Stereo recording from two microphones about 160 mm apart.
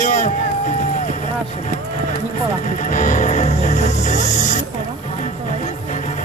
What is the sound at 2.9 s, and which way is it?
Music, 50° left (ahead or behind).